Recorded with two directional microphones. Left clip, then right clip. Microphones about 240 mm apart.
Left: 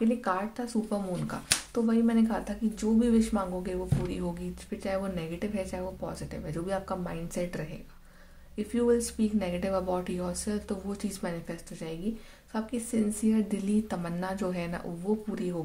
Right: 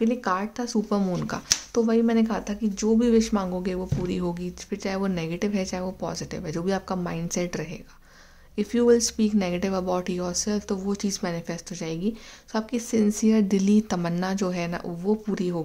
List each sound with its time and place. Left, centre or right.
0.0 s speech: right